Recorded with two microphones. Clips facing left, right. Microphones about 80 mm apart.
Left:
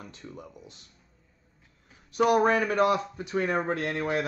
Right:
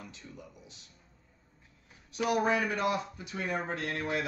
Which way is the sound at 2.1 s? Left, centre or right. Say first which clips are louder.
Left 6 dB; left.